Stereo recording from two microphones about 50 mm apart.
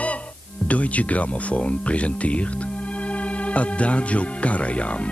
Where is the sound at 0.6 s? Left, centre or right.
Left.